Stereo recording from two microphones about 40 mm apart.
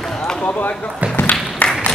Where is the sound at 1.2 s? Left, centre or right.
Left.